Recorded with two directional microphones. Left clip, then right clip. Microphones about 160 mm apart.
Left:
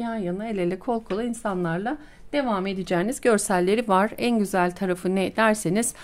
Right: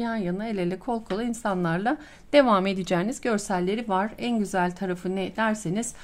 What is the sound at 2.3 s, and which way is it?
Speech, 15° right (ahead or behind).